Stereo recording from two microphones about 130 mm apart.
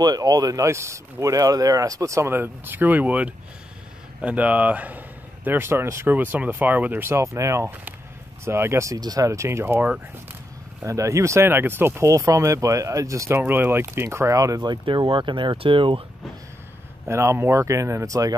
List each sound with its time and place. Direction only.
0.0 s speech: 30° right (ahead or behind)
17.1 s speech: 20° right (ahead or behind)